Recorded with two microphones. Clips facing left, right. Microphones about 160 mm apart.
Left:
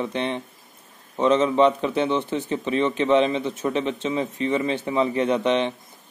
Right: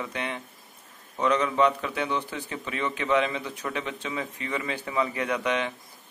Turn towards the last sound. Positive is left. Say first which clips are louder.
# left 7 dB
turn(degrees=25)  # may be behind; listen again after turning